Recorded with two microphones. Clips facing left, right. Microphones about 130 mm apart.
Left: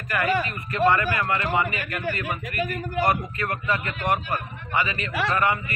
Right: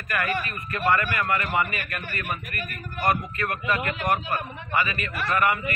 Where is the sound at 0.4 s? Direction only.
25° left (ahead or behind).